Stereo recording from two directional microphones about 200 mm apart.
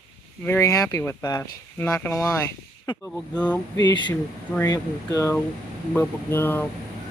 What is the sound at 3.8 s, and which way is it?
Speech, 20° left (ahead or behind).